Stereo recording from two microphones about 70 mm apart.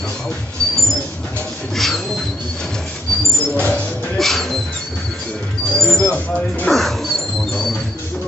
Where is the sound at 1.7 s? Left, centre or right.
Centre.